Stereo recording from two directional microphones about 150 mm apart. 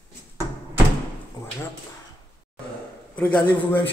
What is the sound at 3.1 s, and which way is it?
Speech, 10° left (ahead or behind).